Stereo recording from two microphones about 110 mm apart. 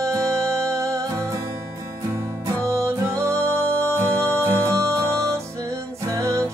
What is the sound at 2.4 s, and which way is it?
Music, 25° right (ahead or behind).